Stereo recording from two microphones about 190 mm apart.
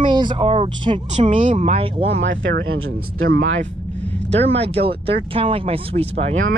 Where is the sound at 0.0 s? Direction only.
25° right (ahead or behind).